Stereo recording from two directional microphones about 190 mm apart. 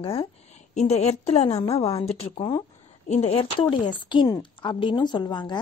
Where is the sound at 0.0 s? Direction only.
30° left (ahead or behind).